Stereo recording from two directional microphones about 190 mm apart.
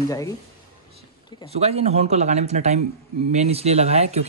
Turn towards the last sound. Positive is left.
turn(degrees=-35)  # may be behind; listen again after turning